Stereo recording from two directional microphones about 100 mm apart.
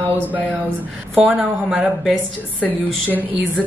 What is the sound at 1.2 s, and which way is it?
Speech, 5° right (ahead or behind).